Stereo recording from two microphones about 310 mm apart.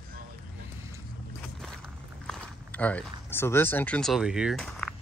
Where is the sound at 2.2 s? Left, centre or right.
Centre.